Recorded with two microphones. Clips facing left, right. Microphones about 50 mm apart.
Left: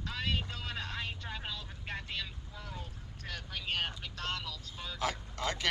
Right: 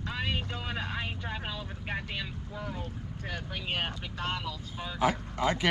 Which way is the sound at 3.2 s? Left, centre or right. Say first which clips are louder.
Right 3 dB; centre.